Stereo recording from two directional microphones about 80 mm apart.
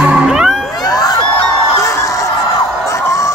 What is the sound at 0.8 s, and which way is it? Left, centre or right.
Crowd, left.